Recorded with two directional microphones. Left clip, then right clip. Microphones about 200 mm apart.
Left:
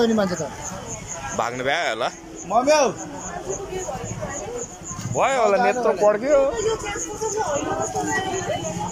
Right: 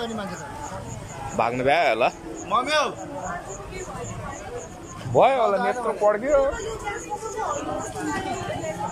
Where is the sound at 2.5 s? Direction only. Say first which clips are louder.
Left 5 dB; 40° left (ahead or behind).